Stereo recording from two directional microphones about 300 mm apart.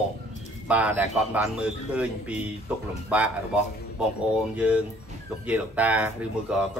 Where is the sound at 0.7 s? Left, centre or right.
Centre.